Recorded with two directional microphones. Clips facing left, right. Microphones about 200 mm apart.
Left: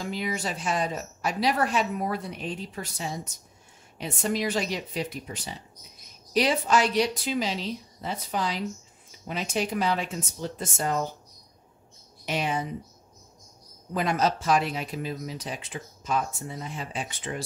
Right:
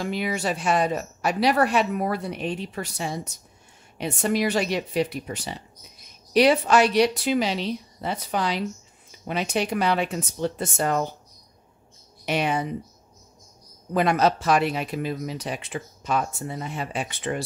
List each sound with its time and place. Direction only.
0.0 s speech: 70° right (ahead or behind)
12.3 s speech: 70° right (ahead or behind)
13.9 s speech: 65° right (ahead or behind)